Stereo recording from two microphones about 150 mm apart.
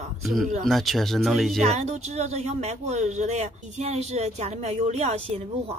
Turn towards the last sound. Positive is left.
turn(degrees=-40)  # may be behind; listen again after turning